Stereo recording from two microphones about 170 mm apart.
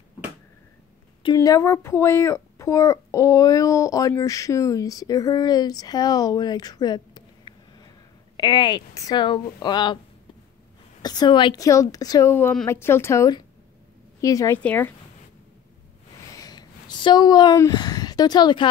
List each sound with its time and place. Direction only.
1.2 s a child's voice: 20° left (ahead or behind)
11.0 s a child's voice: 25° left (ahead or behind)
14.6 s speech: 10° left (ahead or behind)
16.3 s a sound: 20° left (ahead or behind)